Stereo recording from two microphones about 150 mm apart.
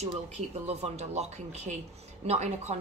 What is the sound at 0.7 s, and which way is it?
A woman's voice, 45° right (ahead or behind).